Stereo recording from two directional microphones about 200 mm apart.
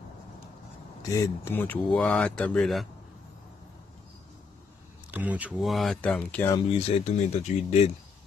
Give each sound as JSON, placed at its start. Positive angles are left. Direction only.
{"t": 1.0, "sound": "speech", "side_deg": 15}
{"t": 5.1, "sound": "speech", "side_deg": -5}
{"t": 6.8, "sound": "speech", "side_deg": 30}